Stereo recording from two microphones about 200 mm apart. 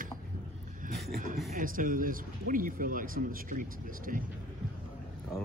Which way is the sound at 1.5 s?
45° right (ahead or behind).